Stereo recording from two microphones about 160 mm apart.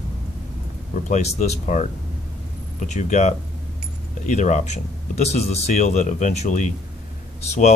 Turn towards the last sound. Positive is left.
turn(degrees=45)  # may be behind; listen again after turning